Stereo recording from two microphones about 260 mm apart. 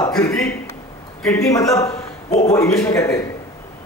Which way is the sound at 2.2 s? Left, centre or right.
Left.